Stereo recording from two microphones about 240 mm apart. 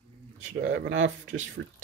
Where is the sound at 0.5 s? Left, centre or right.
Right.